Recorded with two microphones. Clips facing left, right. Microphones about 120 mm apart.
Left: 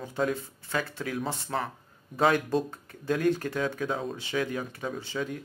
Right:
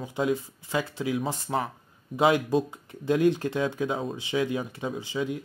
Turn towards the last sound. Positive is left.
turn(degrees=-15)  # may be behind; listen again after turning